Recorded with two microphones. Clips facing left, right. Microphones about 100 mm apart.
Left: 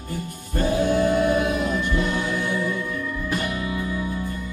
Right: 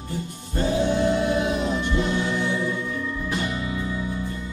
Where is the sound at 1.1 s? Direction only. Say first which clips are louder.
Left 3 dB; 50° left (ahead or behind).